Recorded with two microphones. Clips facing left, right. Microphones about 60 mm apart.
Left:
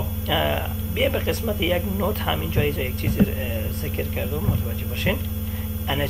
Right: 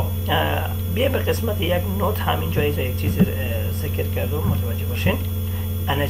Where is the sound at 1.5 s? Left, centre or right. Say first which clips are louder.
Right 1 dB; centre.